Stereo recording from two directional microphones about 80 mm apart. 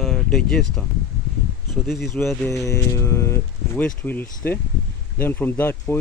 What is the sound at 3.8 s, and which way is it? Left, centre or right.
Speech, left.